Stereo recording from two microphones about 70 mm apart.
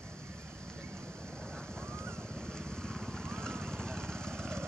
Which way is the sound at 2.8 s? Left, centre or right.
Centre.